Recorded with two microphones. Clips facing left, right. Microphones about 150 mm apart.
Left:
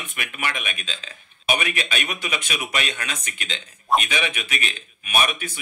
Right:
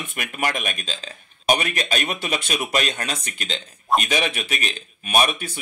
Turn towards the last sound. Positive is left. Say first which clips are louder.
# right 3 dB
turn(degrees=-35)  # may be behind; listen again after turning